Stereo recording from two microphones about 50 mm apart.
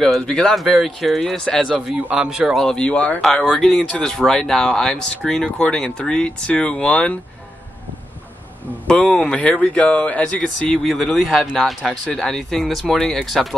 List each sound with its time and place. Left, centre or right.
0.3 s speech: centre
0.6 s speech: centre
2.1 s speech: centre
2.5 s speech: centre
2.8 s speech: left
3.3 s speech: centre
8.8 s speech: centre
10.4 s speech: centre